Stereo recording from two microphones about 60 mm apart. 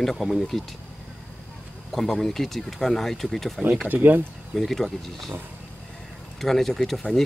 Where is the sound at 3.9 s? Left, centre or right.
Right.